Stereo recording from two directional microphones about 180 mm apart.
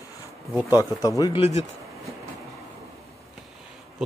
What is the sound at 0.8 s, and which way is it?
Speech, 20° left (ahead or behind).